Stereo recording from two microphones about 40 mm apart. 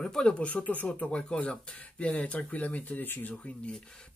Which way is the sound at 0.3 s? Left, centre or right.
Left.